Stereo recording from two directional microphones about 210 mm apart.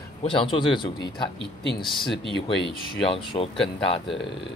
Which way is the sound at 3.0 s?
25° left (ahead or behind).